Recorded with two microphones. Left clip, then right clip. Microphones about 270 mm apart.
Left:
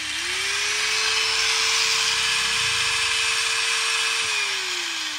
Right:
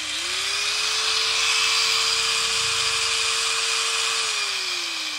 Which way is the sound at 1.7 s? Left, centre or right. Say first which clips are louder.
Even; centre.